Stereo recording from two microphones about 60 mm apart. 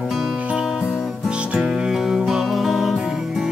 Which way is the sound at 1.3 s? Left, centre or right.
Centre.